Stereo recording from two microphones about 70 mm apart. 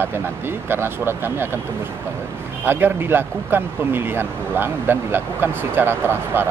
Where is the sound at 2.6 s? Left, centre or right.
Right.